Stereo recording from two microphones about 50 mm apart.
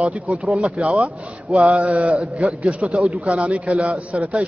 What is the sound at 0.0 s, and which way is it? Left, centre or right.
A man's voice, right.